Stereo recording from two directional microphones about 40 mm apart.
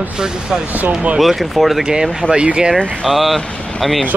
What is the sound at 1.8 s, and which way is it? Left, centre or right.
Speech, centre.